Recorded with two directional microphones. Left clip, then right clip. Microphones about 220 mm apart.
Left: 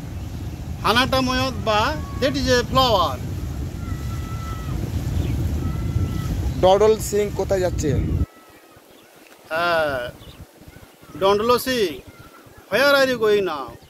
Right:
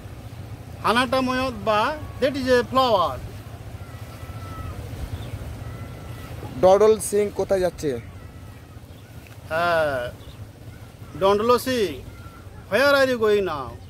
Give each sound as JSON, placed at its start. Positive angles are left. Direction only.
{"t": 0.8, "sound": "a man's voice", "side_deg": -5}
{"t": 6.6, "sound": "speech", "side_deg": -10}
{"t": 9.5, "sound": "a man's voice", "side_deg": 5}
{"t": 11.1, "sound": "a man's voice", "side_deg": 0}